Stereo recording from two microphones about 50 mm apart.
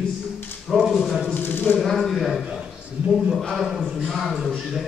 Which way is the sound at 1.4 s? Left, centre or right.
Left.